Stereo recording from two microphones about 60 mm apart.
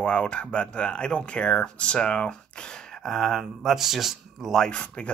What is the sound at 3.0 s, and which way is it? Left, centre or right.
Speech, centre.